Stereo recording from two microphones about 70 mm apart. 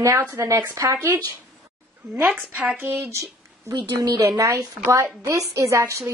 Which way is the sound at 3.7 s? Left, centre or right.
Right.